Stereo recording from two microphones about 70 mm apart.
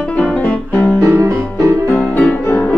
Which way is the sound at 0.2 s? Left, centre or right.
Centre.